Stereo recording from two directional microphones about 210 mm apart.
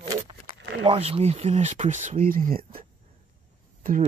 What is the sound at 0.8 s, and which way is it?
Speech, 25° right (ahead or behind).